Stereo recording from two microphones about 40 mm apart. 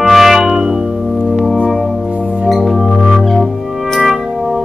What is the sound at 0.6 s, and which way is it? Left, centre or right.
Organ, centre.